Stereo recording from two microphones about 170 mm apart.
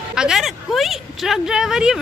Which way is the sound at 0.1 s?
5° right (ahead or behind).